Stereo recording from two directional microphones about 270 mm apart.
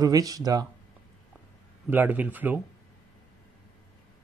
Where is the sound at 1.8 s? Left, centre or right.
Centre.